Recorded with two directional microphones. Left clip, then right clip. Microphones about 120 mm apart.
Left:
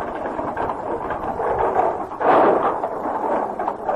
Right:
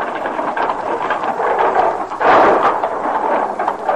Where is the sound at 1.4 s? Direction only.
45° left (ahead or behind).